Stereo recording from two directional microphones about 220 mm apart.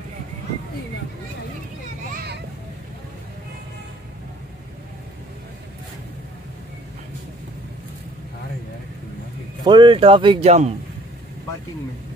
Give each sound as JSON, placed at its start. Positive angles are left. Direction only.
{"t": 2.1, "sound": "children playing", "side_deg": -50}
{"t": 9.7, "sound": "speech", "side_deg": -20}